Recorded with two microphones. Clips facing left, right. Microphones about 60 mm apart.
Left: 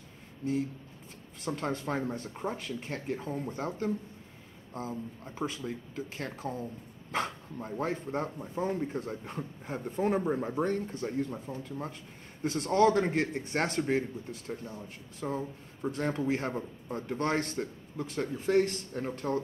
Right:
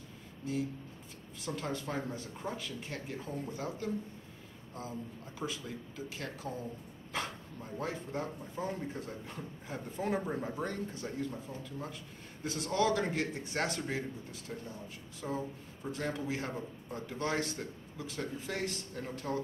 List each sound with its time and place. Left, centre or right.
1.4 s speech: left
10.2 s speech: left
10.6 s speech: left